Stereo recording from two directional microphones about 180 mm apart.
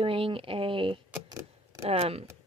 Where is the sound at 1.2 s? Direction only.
20° right (ahead or behind).